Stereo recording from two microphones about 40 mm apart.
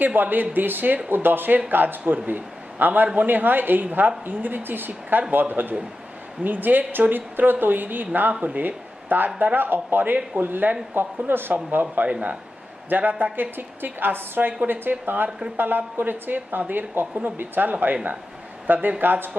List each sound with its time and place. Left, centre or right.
0.0 s a woman's voice: right
11.8 s speech: right
13.2 s a woman's voice: right